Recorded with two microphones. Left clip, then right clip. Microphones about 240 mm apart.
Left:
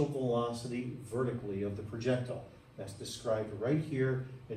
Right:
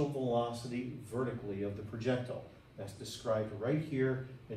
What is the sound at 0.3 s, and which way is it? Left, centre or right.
A man's voice, centre.